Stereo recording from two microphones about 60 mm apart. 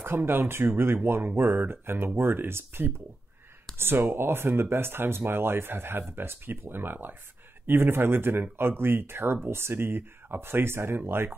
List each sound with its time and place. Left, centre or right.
0.0 s speech: right